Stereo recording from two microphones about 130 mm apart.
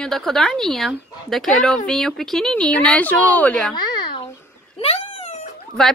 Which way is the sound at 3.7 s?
35° left (ahead or behind).